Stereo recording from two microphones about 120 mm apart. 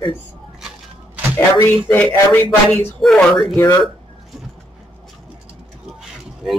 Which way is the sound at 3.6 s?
30° left (ahead or behind).